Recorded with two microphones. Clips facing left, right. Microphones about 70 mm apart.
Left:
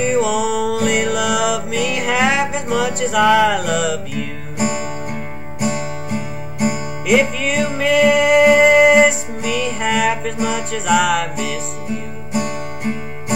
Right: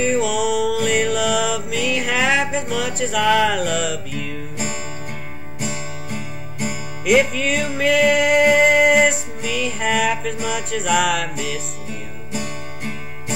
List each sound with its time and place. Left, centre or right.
0.0 s music: centre
4.6 s music: centre
7.1 s music: centre